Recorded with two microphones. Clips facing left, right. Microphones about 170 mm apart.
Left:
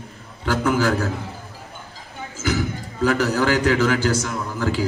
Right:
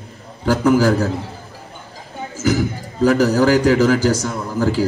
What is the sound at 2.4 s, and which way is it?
A man's voice, 35° right (ahead or behind).